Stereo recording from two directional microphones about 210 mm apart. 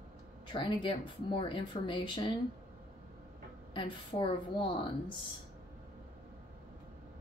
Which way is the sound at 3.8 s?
25° left (ahead or behind).